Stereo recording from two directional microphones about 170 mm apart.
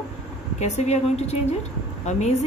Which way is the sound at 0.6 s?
40° left (ahead or behind).